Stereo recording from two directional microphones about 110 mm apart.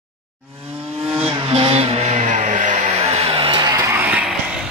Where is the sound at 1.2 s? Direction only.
55° right (ahead or behind).